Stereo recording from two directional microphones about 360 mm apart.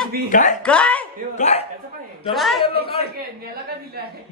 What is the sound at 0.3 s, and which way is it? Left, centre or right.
Speech, left.